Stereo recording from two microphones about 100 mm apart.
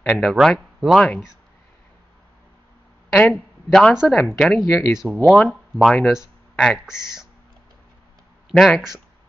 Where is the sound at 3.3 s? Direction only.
5° left (ahead or behind).